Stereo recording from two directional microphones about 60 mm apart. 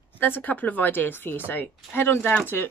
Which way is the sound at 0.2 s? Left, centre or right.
Left.